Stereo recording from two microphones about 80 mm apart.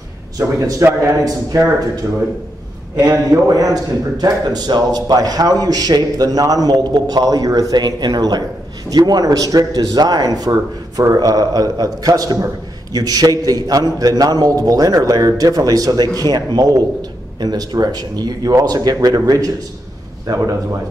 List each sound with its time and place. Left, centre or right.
0.8 s a man's voice: right
3.1 s speech: right